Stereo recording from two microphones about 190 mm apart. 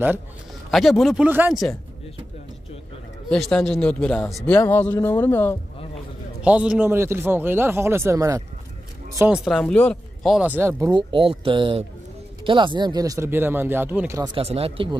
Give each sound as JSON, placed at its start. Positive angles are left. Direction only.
{"t": 0.7, "sound": "speech", "side_deg": 0}
{"t": 3.3, "sound": "speech", "side_deg": 0}
{"t": 6.4, "sound": "speech", "side_deg": -5}
{"t": 9.2, "sound": "speech", "side_deg": -5}
{"t": 14.3, "sound": "speech", "side_deg": -30}